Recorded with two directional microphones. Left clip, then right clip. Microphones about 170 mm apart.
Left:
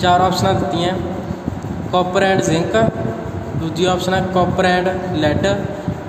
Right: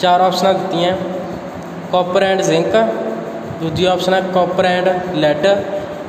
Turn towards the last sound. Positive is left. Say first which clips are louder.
# right 4 dB
turn(degrees=0)  # may be behind; listen again after turning